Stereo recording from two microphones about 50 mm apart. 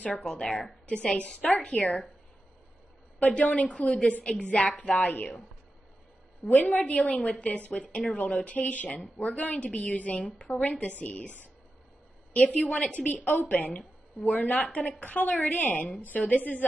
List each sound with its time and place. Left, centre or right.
0.1 s a woman's voice: centre
3.2 s a woman's voice: left
6.5 s a woman's voice: left
12.9 s speech: left